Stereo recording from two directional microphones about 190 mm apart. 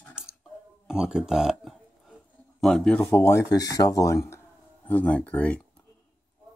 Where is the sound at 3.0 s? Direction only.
15° left (ahead or behind).